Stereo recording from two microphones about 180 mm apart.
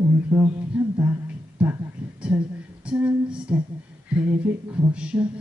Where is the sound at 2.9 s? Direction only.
5° right (ahead or behind).